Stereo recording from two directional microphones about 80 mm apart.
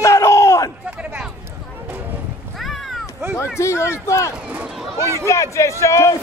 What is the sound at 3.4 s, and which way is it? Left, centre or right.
Speech, left.